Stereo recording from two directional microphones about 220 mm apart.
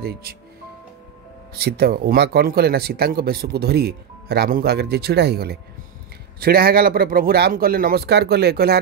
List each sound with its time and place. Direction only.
0.0 s speech: 45° right (ahead or behind)
1.5 s speech: 45° right (ahead or behind)